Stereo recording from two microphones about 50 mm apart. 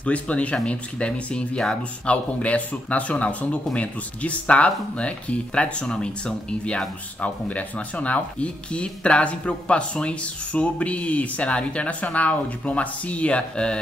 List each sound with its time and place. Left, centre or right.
0.0 s speech: left